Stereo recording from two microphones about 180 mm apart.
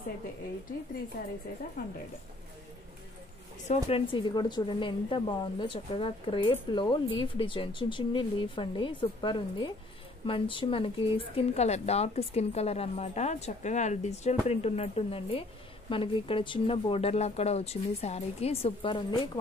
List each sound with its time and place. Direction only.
1.2 s speech: 55° left (ahead or behind)
3.6 s a woman's voice: 30° left (ahead or behind)